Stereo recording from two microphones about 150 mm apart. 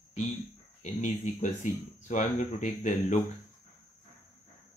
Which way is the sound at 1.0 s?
55° left (ahead or behind).